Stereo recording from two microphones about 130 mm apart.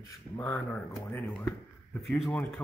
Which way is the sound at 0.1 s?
20° left (ahead or behind).